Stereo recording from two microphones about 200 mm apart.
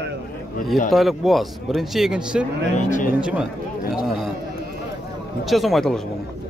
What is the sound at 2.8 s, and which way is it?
Speech, 40° left (ahead or behind).